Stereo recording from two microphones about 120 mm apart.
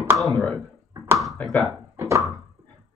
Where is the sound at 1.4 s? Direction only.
10° left (ahead or behind).